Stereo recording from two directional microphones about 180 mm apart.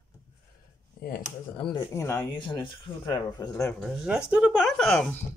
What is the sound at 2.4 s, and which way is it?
Speech, 25° left (ahead or behind).